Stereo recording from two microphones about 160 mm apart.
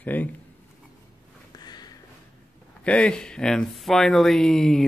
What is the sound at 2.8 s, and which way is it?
Speech, 5° left (ahead or behind).